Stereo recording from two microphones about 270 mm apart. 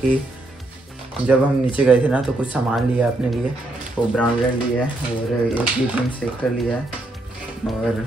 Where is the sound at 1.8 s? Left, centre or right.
Centre.